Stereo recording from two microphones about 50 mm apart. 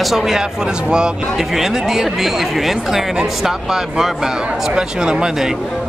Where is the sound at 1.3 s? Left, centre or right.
Centre.